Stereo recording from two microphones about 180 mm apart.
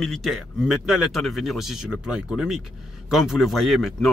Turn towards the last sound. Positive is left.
turn(degrees=0)  # may be behind; listen again after turning